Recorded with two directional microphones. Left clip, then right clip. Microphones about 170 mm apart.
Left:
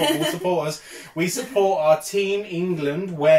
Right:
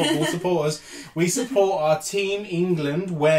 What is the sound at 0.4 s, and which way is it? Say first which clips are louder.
Speech: even; 25° right (ahead or behind).